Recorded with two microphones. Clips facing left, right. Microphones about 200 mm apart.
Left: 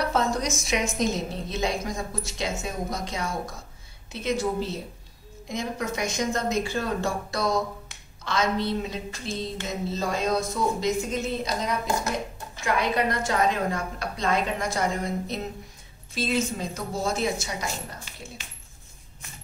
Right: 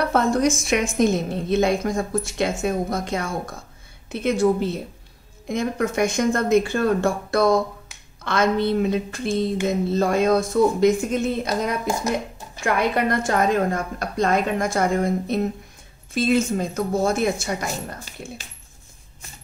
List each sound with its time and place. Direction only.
0.0 s a woman's voice: 55° right (ahead or behind)